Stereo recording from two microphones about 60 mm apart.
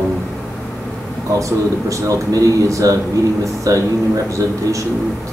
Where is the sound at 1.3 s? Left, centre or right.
Right.